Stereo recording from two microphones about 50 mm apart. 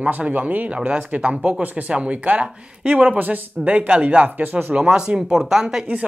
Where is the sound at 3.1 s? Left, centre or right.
Right.